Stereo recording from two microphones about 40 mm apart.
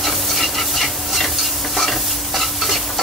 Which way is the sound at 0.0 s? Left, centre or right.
Centre.